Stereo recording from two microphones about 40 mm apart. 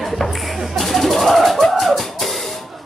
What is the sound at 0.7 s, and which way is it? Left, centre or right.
Music, centre.